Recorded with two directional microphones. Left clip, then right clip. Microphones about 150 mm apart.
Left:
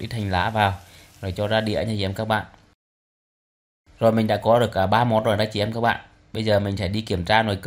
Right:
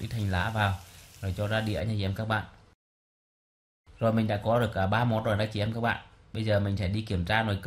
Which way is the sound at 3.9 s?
25° left (ahead or behind).